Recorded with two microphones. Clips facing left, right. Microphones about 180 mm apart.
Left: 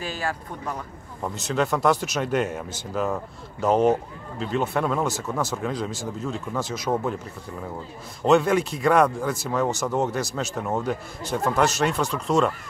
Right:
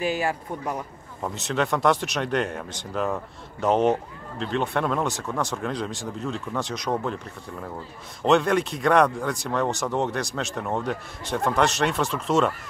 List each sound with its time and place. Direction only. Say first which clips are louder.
0.0 s speech: right 4 dB; 15° right (ahead or behind)
1.2 s speech: left 1 dB; centre (ahead or behind)
8.2 s speech: left 1 dB; centre (ahead or behind)